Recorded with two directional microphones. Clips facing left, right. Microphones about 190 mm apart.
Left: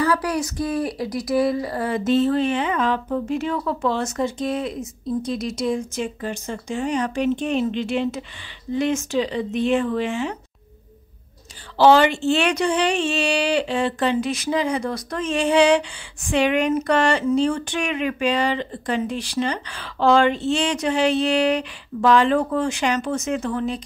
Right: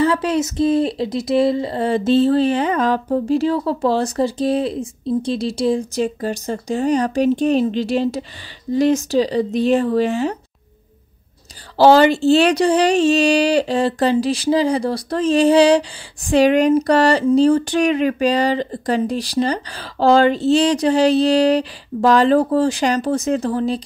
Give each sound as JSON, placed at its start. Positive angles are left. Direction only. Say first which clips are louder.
{"t": 0.0, "sound": "speech", "louder": "right 4 dB", "side_deg": -25}
{"t": 11.8, "sound": "speech", "louder": "right 4 dB", "side_deg": -35}